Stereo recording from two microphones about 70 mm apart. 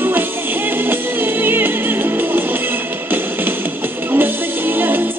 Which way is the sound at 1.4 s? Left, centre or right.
Right.